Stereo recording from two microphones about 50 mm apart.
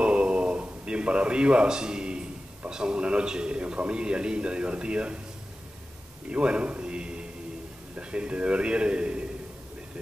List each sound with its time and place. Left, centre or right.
0.0 s speech: right
6.3 s a man's voice: right